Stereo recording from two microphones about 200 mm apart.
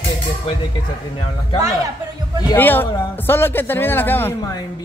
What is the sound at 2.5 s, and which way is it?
A man's voice, 10° left (ahead or behind).